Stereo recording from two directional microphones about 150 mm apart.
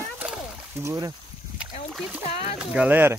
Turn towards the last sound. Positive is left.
turn(degrees=-10)  # may be behind; listen again after turning